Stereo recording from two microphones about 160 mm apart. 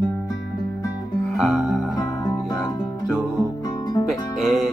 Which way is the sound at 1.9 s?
20° left (ahead or behind).